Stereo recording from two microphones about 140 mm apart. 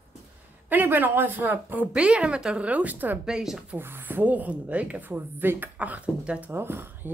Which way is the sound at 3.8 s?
15° right (ahead or behind).